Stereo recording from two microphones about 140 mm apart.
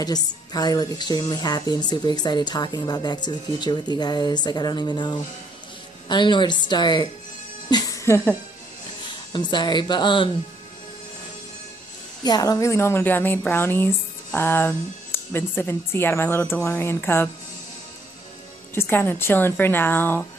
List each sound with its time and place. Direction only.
0.0 s speech: 30° left (ahead or behind)
7.7 s speech: 20° left (ahead or behind)
9.3 s speech: 35° left (ahead or behind)
12.3 s speech: 25° left (ahead or behind)
18.8 s speech: 15° left (ahead or behind)